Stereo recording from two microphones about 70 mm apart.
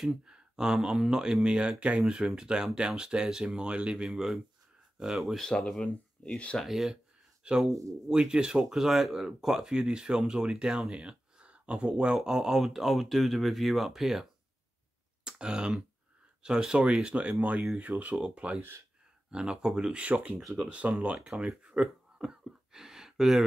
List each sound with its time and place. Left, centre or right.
0.0 s speech: centre
5.5 s speech: centre
6.6 s speech: centre
15.2 s a sound: centre
16.4 s speech: centre
18.6 s speech: right
19.3 s speech: centre
22.4 s gasp: centre